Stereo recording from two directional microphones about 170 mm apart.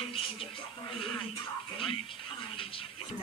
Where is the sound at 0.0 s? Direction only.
35° left (ahead or behind).